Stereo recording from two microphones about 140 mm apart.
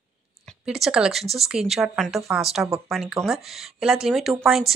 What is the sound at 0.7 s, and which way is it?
Speech, 5° right (ahead or behind).